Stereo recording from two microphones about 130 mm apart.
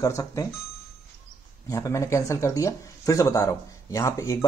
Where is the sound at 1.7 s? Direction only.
20° left (ahead or behind).